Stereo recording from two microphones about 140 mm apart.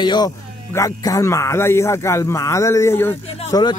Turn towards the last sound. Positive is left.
turn(degrees=20)  # may be behind; listen again after turning